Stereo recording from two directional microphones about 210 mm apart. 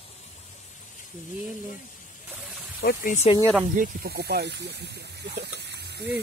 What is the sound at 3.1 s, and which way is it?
Speech, 30° left (ahead or behind).